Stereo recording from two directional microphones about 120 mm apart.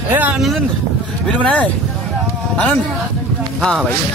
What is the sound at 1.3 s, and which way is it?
Speech, 10° left (ahead or behind).